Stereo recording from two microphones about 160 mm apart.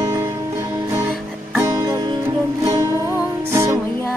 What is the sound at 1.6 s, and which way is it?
Music, 20° right (ahead or behind).